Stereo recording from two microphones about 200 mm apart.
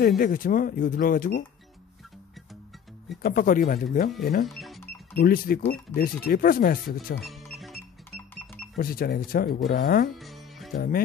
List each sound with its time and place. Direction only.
0.2 s speech: 45° left (ahead or behind)
3.2 s speech: 45° left (ahead or behind)
4.5 s cash register: centre (ahead or behind)
5.1 s speech: 45° left (ahead or behind)
7.2 s music: centre (ahead or behind)
8.7 s speech: 50° left (ahead or behind)
10.1 s music: centre (ahead or behind)